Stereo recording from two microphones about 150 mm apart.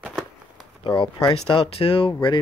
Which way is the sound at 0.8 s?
30° left (ahead or behind).